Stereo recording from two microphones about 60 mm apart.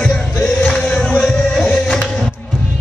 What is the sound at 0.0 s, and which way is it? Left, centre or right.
Music, centre.